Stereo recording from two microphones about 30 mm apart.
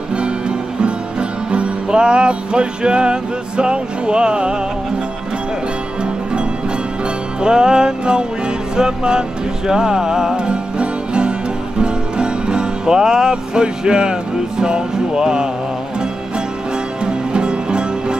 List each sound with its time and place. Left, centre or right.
0.1 s music: right
7.4 s music: right
17.0 s music: right